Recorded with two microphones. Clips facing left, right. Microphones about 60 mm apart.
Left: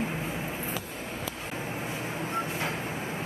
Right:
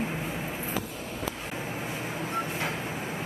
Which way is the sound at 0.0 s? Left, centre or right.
Centre.